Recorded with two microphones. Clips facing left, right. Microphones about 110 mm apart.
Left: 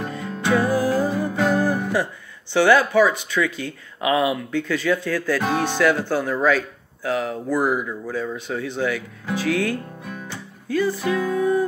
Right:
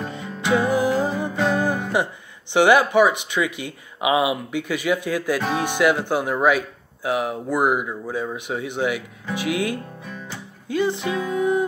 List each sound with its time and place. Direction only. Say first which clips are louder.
0.1 s music: even; 15° right (ahead or behind)
1.3 s music: left 1 dB; 5° left (ahead or behind)
1.6 s music: left 1 dB; 20° right (ahead or behind)
2.5 s speech: right 1 dB; 15° right (ahead or behind)
9.3 s music: left 2 dB; 15° right (ahead or behind)